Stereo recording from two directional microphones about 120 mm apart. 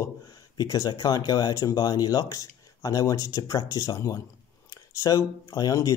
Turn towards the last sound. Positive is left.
turn(degrees=30)  # may be behind; listen again after turning